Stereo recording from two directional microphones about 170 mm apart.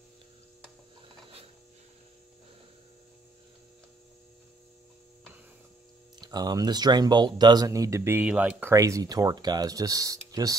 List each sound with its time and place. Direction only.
6.2 s speech: 25° right (ahead or behind)